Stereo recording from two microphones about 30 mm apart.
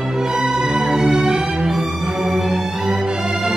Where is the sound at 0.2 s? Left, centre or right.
Right.